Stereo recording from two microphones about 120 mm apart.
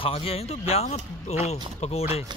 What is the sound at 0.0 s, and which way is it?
Speech, 55° left (ahead or behind).